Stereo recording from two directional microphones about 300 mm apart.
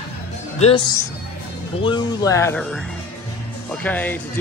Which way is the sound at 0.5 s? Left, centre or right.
Centre.